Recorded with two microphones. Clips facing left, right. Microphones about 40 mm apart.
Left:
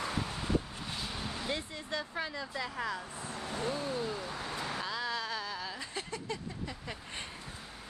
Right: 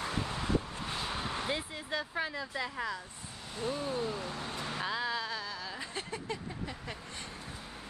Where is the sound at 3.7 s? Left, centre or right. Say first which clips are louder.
Right 1 dB; centre.